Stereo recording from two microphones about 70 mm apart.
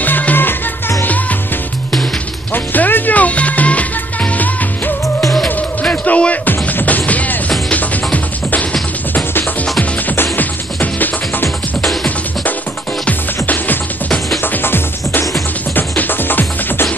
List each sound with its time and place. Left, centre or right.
0.0 s music: left
2.5 s music: left
11.8 s music: centre
13.0 s music: left